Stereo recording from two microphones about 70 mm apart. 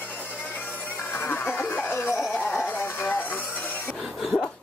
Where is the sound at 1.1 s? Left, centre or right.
Left.